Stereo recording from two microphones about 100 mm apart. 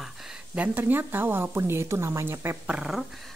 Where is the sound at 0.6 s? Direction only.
15° right (ahead or behind).